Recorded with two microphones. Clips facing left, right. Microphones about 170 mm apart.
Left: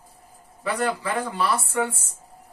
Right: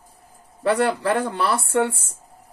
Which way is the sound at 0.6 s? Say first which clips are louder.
Right 6 dB; 65° right (ahead or behind).